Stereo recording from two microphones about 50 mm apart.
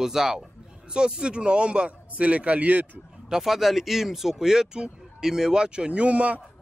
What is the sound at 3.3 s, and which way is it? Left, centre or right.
A man's voice, centre.